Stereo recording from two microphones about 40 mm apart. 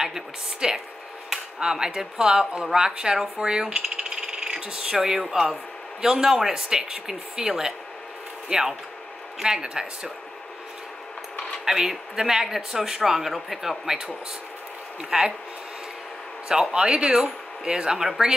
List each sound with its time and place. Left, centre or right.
0.0 s speech: centre
11.6 s speech: centre
16.7 s speech: right
18.0 s speech: centre